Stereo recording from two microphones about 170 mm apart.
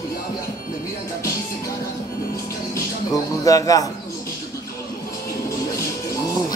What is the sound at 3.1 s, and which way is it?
Speech, 20° left (ahead or behind).